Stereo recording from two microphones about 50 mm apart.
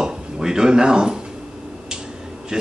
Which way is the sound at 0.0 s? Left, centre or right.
Centre.